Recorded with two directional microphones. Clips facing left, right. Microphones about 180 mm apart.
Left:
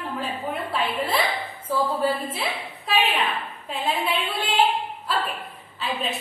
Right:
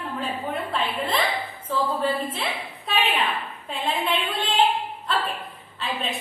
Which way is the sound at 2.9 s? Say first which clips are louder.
Left 1 dB; centre (ahead or behind).